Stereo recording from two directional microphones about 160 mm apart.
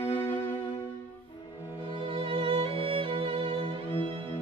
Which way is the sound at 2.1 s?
35° right (ahead or behind).